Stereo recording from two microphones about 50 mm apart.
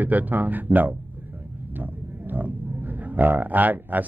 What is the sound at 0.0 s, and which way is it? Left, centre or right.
Speech, right.